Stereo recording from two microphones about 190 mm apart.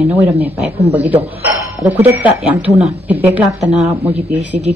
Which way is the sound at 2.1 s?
10° right (ahead or behind).